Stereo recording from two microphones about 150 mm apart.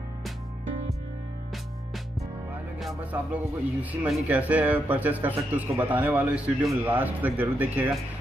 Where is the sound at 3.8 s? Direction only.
10° right (ahead or behind).